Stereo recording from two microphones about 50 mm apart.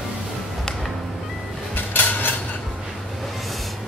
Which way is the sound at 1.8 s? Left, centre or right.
Left.